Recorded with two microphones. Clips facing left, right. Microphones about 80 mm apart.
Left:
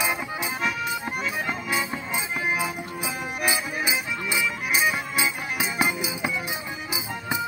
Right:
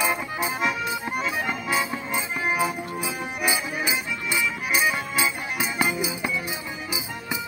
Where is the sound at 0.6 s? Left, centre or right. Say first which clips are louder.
Left 1 dB; centre.